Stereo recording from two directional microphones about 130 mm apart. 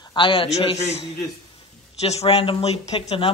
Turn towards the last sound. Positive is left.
turn(degrees=45)  # may be behind; listen again after turning